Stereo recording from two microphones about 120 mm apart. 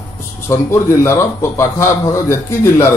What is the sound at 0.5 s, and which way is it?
A man's voice, 25° left (ahead or behind).